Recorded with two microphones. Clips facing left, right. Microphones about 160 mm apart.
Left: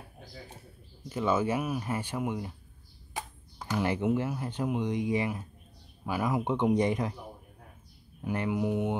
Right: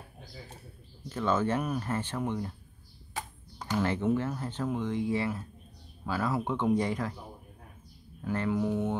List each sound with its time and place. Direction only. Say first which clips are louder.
1.0 s speech: left 1 dB; 10° left (ahead or behind)
3.5 s speech: even; 10° left (ahead or behind)
8.2 s speech: even; 15° left (ahead or behind)